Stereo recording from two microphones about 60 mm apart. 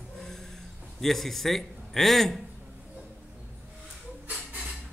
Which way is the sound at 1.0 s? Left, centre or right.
Centre.